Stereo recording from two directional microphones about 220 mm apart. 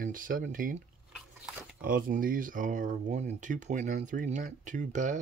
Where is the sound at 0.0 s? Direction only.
40° right (ahead or behind).